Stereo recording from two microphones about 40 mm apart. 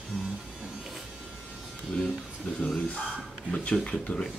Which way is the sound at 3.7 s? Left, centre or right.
Left.